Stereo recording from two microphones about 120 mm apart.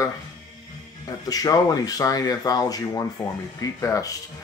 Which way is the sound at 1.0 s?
30° left (ahead or behind).